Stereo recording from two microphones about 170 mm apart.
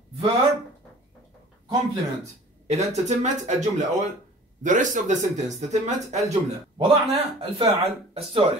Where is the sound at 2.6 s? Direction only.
40° right (ahead or behind).